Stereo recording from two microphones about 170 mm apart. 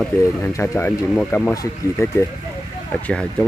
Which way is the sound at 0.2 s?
20° left (ahead or behind).